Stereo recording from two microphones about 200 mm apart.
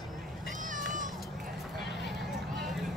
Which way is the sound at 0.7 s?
40° right (ahead or behind).